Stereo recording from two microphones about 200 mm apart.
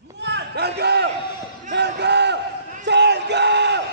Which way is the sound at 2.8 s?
60° right (ahead or behind).